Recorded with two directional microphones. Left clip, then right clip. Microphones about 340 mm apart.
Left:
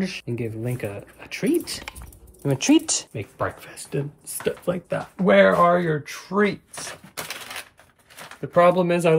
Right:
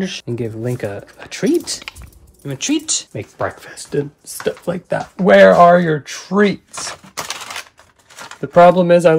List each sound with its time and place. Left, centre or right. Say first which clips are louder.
0.0 s speech: right 6 dB; centre
2.4 s speech: left 1 dB; centre
3.2 s speech: right 5 dB; centre
6.7 s typewriter: right 8 dB; right
8.4 s speech: right 8 dB; centre